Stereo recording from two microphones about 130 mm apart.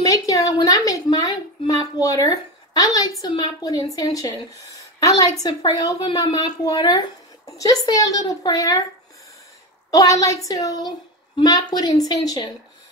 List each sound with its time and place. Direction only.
0.0 s a woman's voice: 25° left (ahead or behind)
5.4 s speech: 30° left (ahead or behind)
9.8 s speech: 25° left (ahead or behind)